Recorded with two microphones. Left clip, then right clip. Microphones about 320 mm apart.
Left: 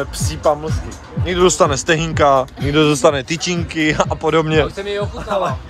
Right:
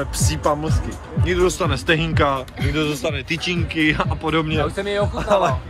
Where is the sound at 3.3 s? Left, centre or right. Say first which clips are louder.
Left 2 dB; centre.